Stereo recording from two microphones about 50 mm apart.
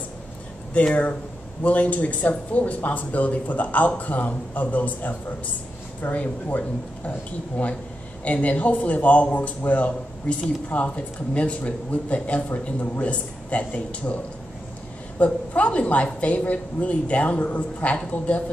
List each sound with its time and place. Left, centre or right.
0.7 s a woman's voice: left